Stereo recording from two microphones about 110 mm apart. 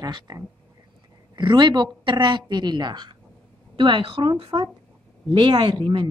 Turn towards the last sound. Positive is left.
turn(degrees=-45)  # may be behind; listen again after turning